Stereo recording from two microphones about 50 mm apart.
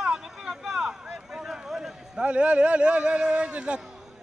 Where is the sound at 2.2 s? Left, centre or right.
Right.